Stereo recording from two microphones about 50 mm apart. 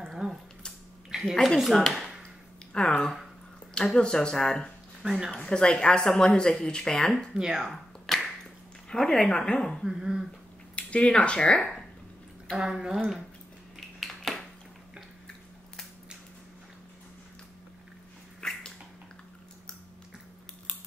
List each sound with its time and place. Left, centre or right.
0.2 s a sound: centre
1.1 s a sound: centre
1.8 s speech: centre
5.0 s speech: centre
5.3 s speech: centre
7.3 s speech: centre
7.7 s clapping: centre
8.9 s speech: centre
9.8 s speech: centre
10.8 s speech: left
12.5 s speech: centre
13.7 s cutlery: centre
18.4 s dog: centre